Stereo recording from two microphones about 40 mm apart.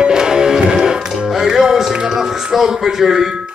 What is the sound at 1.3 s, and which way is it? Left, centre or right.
Music, centre.